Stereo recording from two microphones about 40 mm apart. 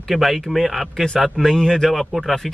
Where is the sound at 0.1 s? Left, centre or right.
Centre.